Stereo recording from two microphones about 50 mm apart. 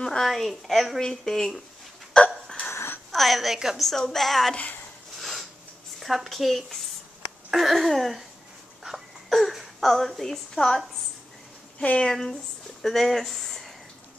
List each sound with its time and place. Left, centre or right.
0.0 s a sound: centre
0.3 s a woman's voice: centre
2.1 s hiccup: centre
2.7 s a sound: left
3.1 s a woman's voice: centre
5.2 s a sound: centre
5.9 s a woman's voice: centre
9.3 s speech: centre
12.0 s speech: centre